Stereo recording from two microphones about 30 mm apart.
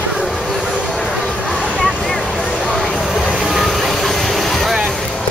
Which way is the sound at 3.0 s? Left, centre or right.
Centre.